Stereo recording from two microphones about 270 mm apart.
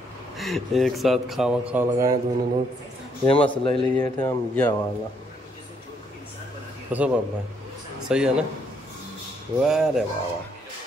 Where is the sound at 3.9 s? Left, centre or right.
Centre.